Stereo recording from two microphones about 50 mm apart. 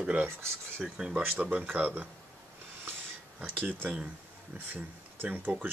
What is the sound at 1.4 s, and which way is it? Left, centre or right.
Speech, right.